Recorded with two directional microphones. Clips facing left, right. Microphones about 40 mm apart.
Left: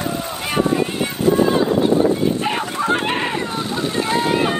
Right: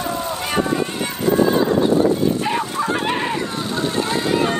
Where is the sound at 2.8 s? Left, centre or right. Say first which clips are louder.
Left 5 dB; left.